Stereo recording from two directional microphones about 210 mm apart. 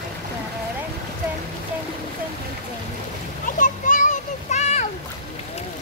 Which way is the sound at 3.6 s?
40° left (ahead or behind).